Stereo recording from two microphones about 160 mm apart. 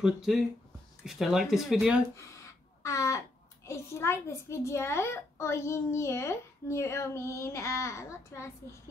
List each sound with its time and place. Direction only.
0.0 s speech: 5° right (ahead or behind)
2.8 s a child's voice: 20° left (ahead or behind)